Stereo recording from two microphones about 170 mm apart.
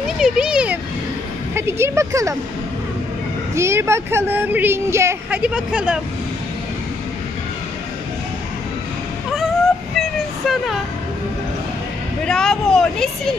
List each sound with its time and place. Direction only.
0.2 s speech: 5° right (ahead or behind)
3.5 s speech: 15° right (ahead or behind)
9.9 s vehicle: centre (ahead or behind)
12.3 s speech: 5° left (ahead or behind)